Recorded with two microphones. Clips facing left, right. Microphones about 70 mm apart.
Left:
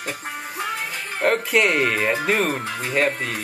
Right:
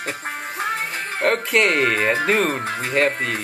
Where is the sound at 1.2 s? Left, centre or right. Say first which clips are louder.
Even; centre.